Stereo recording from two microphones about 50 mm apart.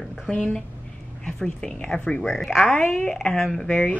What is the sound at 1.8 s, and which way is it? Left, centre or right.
Speech, centre.